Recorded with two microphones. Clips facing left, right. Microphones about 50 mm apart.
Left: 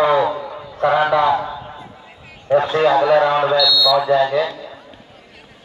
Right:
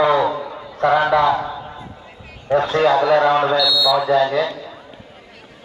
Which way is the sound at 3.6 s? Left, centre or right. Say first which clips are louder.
Left 1 dB; centre.